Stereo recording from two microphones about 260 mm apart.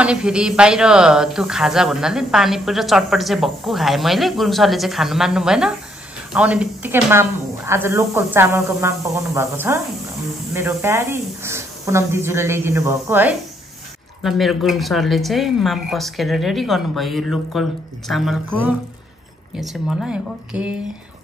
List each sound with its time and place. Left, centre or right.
0.0 s speech: centre